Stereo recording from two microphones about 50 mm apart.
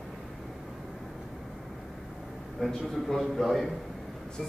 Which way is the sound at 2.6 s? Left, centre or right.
Centre.